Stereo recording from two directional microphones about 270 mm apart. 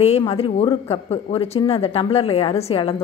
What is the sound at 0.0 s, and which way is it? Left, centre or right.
Speech, left.